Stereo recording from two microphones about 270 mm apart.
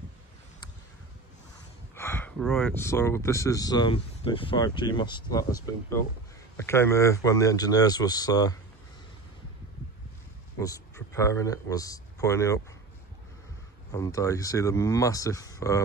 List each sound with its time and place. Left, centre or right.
2.0 s speech: centre
10.6 s speech: centre
13.9 s speech: centre